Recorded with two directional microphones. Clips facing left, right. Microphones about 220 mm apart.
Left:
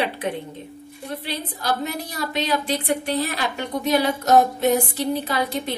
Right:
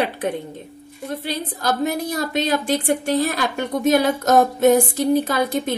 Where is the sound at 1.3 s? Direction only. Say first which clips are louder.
Right 3 dB; 45° right (ahead or behind).